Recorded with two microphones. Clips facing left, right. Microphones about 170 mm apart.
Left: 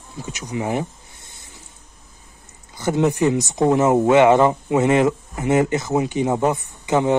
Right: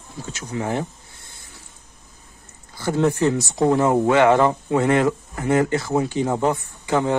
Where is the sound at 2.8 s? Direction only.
20° left (ahead or behind).